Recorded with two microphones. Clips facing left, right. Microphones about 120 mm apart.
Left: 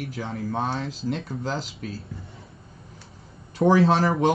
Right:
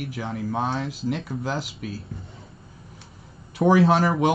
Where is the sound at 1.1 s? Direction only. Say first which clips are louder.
Right 1 dB; 5° right (ahead or behind).